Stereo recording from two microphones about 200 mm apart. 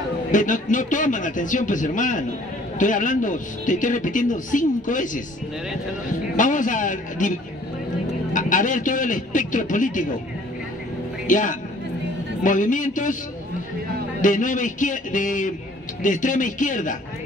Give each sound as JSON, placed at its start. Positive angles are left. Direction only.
{"t": 0.3, "sound": "speech", "side_deg": 40}
{"t": 6.3, "sound": "speech", "side_deg": 40}
{"t": 11.2, "sound": "a man's voice", "side_deg": 40}
{"t": 14.2, "sound": "speech", "side_deg": 40}